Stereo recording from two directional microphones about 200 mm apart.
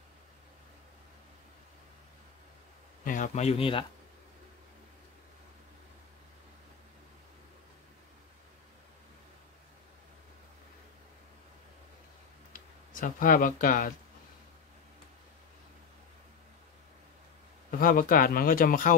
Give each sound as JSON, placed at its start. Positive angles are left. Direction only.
{"t": 3.1, "sound": "speech", "side_deg": 35}
{"t": 13.0, "sound": "a man's voice", "side_deg": 40}
{"t": 17.6, "sound": "a man's voice", "side_deg": 45}